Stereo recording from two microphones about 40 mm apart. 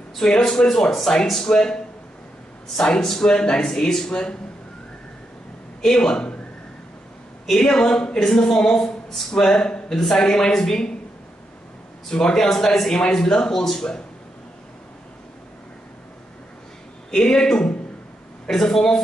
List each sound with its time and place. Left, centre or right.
0.4 s speech: centre
2.8 s speech: centre
5.8 s a man's voice: centre
7.4 s speech: centre
9.9 s speech: centre
12.1 s speech: centre
12.4 s speech: centre
12.9 s speech: left
17.1 s speech: centre